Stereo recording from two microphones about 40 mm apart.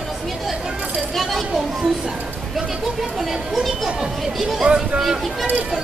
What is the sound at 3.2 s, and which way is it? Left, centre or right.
Speech, centre.